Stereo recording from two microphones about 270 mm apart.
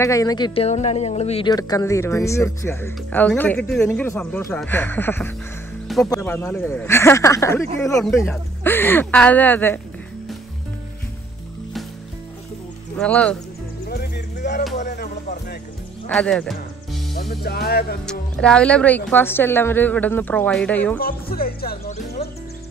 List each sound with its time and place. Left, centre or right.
0.0 s speech: centre
12.9 s speech: centre
13.8 s music: left
16.1 s speech: centre
17.1 s music: left
18.4 s speech: centre
21.0 s music: left